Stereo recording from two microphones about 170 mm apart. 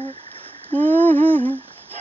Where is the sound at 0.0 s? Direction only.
35° right (ahead or behind).